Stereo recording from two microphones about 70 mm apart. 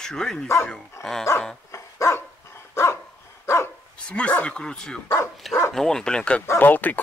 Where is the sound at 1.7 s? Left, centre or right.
Left.